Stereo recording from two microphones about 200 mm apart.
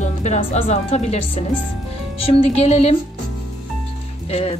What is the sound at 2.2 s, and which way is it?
Speech, 30° left (ahead or behind).